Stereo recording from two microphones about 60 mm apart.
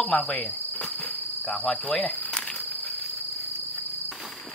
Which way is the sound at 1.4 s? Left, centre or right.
Centre.